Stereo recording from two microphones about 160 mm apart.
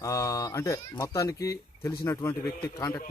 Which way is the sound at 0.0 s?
20° left (ahead or behind).